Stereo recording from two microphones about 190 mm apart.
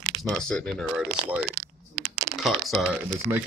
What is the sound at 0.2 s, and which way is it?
Speech, 5° left (ahead or behind).